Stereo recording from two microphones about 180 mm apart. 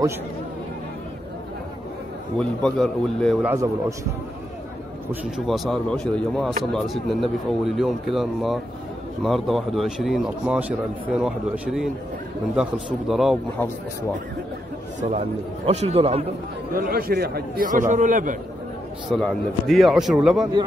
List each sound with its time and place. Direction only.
2.3 s speech: 5° left (ahead or behind)
3.4 s a man's voice: 15° right (ahead or behind)
5.2 s speech: centre (ahead or behind)
15.0 s a man's voice: 35° right (ahead or behind)
16.7 s a man's voice: 60° right (ahead or behind)
19.1 s speech: centre (ahead or behind)